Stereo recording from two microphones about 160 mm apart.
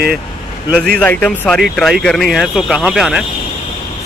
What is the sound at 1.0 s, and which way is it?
Speech, 10° left (ahead or behind).